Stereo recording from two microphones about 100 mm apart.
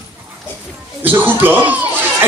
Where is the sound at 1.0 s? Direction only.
20° right (ahead or behind).